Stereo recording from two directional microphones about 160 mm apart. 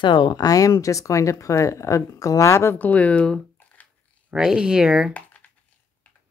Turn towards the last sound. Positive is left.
turn(degrees=10)  # may be behind; listen again after turning